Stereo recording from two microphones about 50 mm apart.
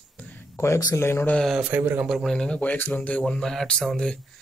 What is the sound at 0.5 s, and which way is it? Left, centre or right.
Speech, left.